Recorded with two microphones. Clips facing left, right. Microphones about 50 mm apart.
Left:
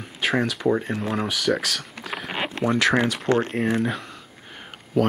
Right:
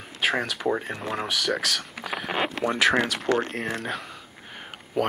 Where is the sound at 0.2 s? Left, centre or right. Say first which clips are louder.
Left 3 dB; centre.